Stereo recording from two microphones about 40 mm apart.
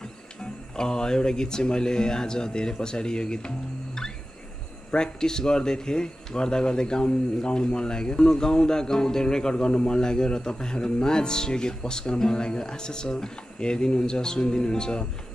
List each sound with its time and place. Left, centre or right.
0.0 s a man's voice: centre